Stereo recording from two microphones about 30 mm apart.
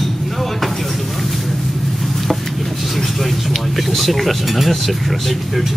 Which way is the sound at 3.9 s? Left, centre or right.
Centre.